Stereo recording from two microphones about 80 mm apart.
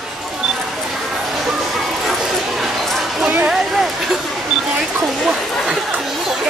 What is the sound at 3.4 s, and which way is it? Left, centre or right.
Speech, centre.